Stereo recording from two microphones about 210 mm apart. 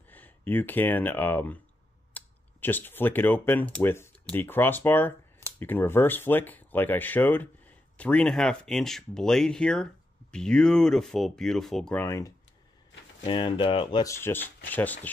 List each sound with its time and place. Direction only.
0.1 s speech: 10° left (ahead or behind)